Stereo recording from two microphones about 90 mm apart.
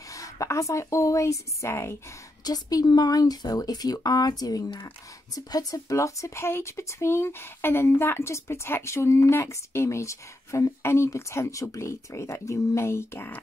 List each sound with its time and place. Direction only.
0.1 s speech: 35° left (ahead or behind)
2.4 s speech: 45° left (ahead or behind); by 13.3 s 30° left (ahead or behind)